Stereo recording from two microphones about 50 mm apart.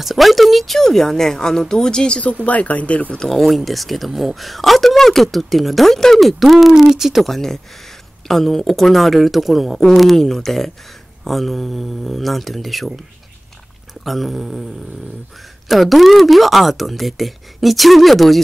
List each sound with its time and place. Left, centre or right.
0.0 s speech: centre; by 3.2 s left
3.2 s speech: centre
7.2 s speech: centre
14.0 s speech: centre
15.7 s speech: centre